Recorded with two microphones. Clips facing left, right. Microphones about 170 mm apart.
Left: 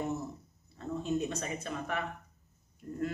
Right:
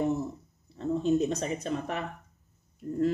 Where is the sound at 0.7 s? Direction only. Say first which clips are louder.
Right 7 dB; 35° right (ahead or behind).